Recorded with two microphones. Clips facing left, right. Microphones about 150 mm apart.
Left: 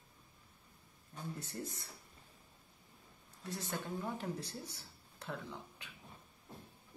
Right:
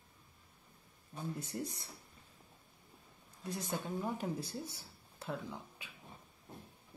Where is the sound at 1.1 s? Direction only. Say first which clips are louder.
Right 3 dB; 15° right (ahead or behind).